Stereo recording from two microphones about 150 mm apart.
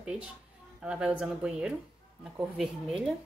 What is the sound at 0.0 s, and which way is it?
A woman's voice, 5° right (ahead or behind).